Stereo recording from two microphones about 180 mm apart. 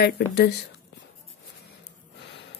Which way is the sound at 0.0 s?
65° left (ahead or behind).